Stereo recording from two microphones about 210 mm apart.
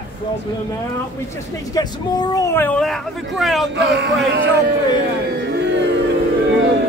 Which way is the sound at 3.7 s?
55° right (ahead or behind).